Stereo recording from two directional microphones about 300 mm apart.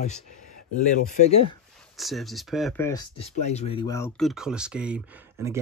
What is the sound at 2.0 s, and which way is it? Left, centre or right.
Speech, centre.